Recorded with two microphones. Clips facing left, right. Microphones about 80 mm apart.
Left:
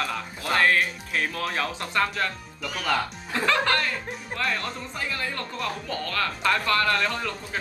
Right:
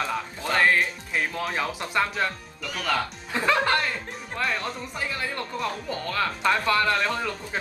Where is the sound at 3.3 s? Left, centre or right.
Centre.